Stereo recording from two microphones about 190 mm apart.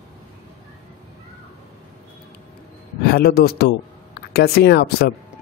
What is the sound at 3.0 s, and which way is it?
A man's voice, 55° left (ahead or behind).